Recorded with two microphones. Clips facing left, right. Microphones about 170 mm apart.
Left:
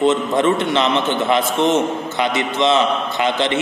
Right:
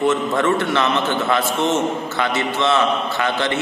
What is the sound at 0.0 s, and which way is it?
A man's voice, 20° left (ahead or behind).